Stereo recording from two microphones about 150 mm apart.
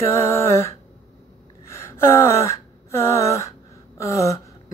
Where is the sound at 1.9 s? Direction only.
15° left (ahead or behind).